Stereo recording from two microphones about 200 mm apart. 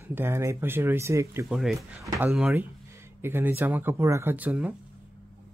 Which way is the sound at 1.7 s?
15° right (ahead or behind).